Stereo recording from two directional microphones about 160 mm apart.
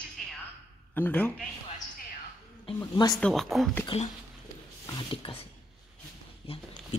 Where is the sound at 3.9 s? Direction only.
40° left (ahead or behind).